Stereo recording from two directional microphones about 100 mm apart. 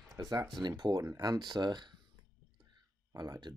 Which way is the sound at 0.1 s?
40° right (ahead or behind).